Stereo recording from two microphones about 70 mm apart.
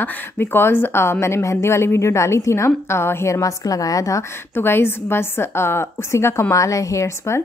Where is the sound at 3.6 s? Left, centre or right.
Left.